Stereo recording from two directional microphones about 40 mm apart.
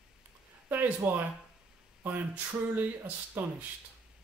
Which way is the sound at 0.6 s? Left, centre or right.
Right.